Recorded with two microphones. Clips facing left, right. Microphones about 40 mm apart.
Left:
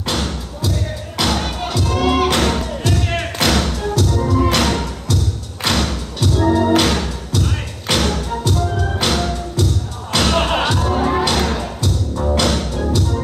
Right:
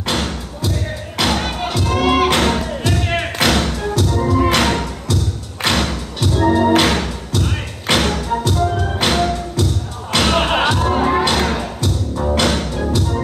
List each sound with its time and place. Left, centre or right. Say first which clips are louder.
0.0 s music: right 1 dB; centre